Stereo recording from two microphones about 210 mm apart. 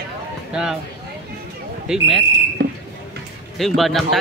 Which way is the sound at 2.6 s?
50° right (ahead or behind).